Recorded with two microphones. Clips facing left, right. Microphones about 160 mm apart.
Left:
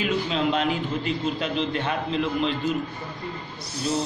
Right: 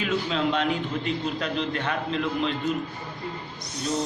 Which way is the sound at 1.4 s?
20° left (ahead or behind).